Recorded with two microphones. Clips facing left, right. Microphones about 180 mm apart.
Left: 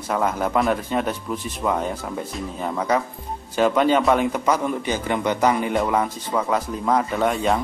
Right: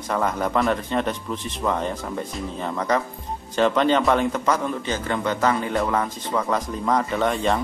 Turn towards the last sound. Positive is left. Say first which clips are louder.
# left 1 dB
turn(degrees=5)  # may be behind; listen again after turning